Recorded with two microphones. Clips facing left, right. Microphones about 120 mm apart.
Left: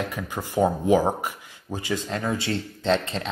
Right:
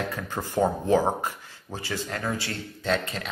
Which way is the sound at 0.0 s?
15° left (ahead or behind).